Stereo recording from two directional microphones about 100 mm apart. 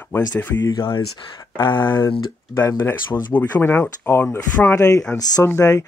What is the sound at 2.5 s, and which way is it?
Speech, 20° left (ahead or behind).